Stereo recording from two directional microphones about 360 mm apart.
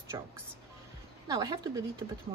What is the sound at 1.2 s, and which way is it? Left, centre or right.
Speech, centre.